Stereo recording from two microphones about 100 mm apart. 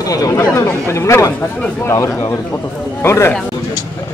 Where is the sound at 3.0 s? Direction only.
25° left (ahead or behind).